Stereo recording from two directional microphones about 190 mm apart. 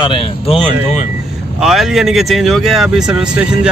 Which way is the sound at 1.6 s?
Centre (ahead or behind).